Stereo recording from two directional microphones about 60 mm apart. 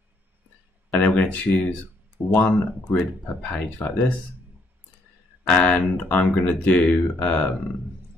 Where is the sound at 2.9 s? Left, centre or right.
Left.